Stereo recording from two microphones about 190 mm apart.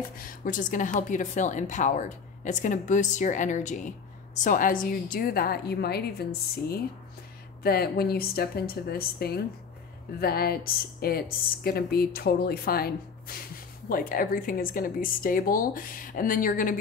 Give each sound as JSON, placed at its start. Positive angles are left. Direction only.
{"t": 0.2, "sound": "speech", "side_deg": 45}